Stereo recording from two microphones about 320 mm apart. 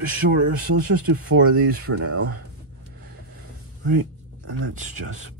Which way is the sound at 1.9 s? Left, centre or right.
Right.